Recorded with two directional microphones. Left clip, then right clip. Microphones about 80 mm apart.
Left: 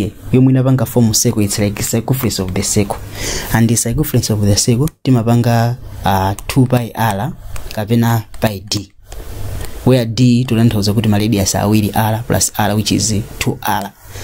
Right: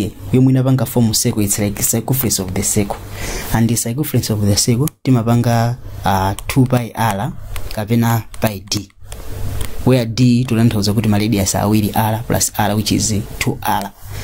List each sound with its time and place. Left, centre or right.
0.0 s speech: left
0.7 s speech: left
1.4 s speech: left
9.8 s speech: left